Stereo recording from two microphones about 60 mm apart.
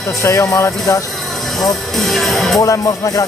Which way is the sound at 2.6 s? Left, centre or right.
Left.